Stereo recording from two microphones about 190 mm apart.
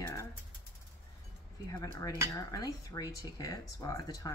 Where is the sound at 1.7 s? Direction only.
15° left (ahead or behind).